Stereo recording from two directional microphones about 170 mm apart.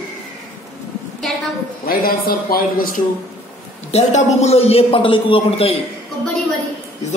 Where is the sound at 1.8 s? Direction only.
60° left (ahead or behind).